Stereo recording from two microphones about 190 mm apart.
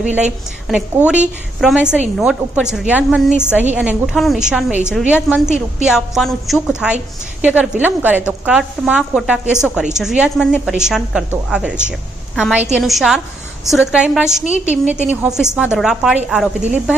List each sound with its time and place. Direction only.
0.0 s a woman's voice: 5° right (ahead or behind)
14.4 s a woman's voice: 40° left (ahead or behind)
14.7 s a woman's voice: 10° right (ahead or behind)